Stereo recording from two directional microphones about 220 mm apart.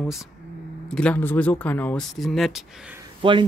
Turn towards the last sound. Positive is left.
turn(degrees=-20)  # may be behind; listen again after turning